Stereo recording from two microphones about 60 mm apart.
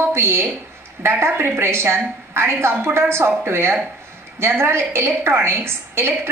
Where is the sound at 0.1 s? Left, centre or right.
Right.